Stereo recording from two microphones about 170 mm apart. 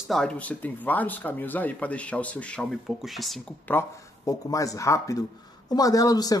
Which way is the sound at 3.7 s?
15° left (ahead or behind).